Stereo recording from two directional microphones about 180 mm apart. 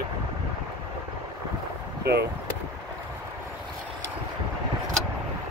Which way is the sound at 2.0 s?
65° right (ahead or behind).